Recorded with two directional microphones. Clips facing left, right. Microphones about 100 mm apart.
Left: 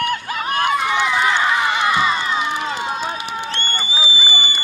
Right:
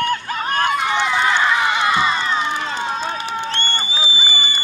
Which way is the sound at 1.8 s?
30° right (ahead or behind).